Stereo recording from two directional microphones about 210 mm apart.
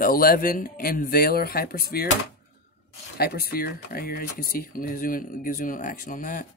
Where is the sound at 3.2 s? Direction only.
45° left (ahead or behind).